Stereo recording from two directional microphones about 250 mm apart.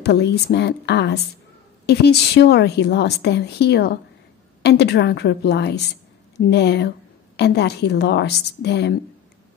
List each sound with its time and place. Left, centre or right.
0.0 s a woman's voice: left